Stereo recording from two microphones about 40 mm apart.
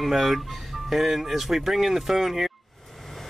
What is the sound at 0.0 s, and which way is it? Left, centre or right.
Speech, centre.